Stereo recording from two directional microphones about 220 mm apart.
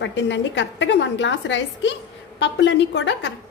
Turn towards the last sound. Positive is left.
turn(degrees=55)  # may be behind; listen again after turning